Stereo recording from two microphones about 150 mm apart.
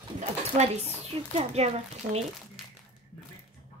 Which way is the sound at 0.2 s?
45° right (ahead or behind).